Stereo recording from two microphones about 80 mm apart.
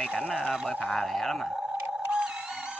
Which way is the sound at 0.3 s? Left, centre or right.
Centre.